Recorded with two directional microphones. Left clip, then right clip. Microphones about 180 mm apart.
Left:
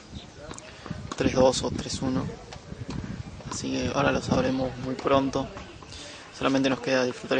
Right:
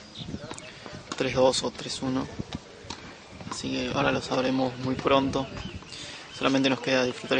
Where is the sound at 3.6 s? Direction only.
5° left (ahead or behind).